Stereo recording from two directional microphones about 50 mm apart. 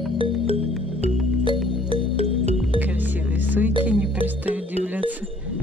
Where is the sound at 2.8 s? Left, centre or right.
Right.